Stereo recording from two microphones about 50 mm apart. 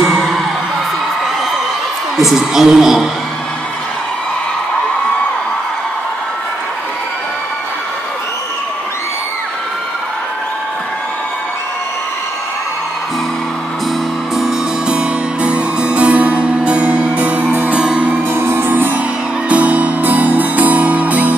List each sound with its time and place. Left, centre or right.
0.0 s music: centre
2.1 s a woman's voice: centre
14.3 s music: centre
18.3 s music: right